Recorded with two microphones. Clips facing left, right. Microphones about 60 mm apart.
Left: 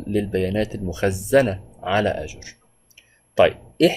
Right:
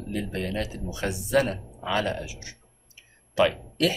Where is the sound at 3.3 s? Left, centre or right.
Left.